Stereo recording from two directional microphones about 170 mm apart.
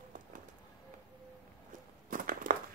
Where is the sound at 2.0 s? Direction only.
55° right (ahead or behind).